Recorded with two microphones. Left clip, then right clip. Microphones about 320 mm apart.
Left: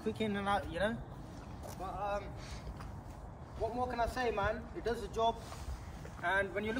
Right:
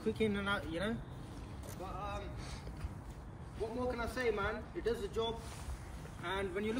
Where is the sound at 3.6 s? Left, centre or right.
Left.